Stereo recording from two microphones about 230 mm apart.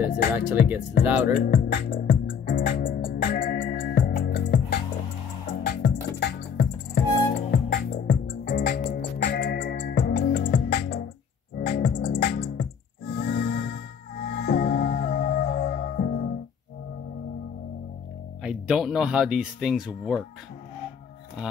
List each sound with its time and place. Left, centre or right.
1.0 s speech: centre
1.4 s music: left
18.4 s speech: centre